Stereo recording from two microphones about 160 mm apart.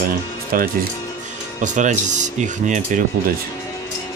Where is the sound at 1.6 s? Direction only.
50° right (ahead or behind).